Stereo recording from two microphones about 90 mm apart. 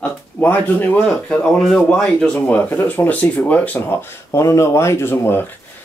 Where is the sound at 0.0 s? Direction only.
15° left (ahead or behind).